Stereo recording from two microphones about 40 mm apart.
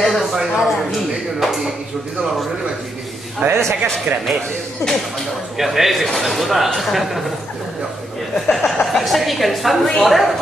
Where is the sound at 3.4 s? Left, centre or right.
Right.